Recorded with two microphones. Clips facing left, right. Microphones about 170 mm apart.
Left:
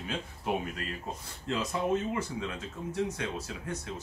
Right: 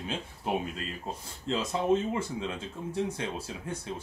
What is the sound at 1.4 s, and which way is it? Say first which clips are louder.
Speech: right 3 dB; 25° right (ahead or behind).